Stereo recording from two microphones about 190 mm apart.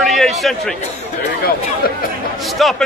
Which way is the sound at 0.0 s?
Centre (ahead or behind).